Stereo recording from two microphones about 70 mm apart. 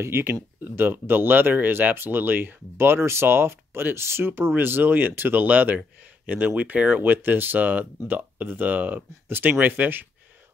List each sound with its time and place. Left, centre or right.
0.0 s speech: right